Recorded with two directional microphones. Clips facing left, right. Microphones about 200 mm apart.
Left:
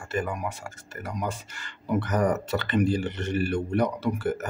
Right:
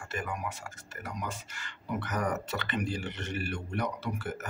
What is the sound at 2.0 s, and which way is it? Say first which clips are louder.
Speech: left 6 dB; 35° left (ahead or behind).